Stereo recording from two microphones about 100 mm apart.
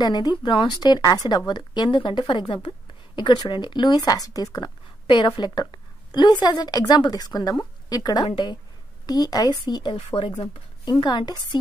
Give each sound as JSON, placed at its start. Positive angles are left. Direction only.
{"t": 0.0, "sound": "a woman's voice", "side_deg": 45}
{"t": 5.0, "sound": "a woman's voice", "side_deg": 55}
{"t": 9.9, "sound": "speech", "side_deg": 70}
{"t": 10.9, "sound": "a woman's voice", "side_deg": 45}